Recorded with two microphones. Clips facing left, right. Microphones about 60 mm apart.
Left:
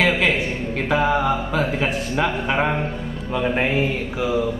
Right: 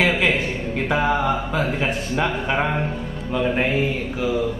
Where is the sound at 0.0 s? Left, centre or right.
Centre.